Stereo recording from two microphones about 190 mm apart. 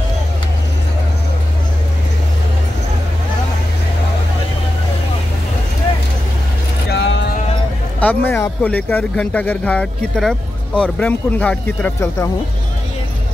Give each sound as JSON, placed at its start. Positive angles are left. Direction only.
{"t": 6.9, "sound": "vehicle", "side_deg": 65}
{"t": 8.0, "sound": "speech", "side_deg": 10}